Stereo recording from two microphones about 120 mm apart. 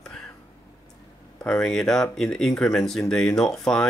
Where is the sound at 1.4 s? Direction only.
10° left (ahead or behind).